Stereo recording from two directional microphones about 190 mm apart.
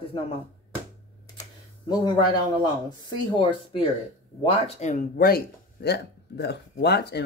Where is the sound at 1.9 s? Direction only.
20° left (ahead or behind).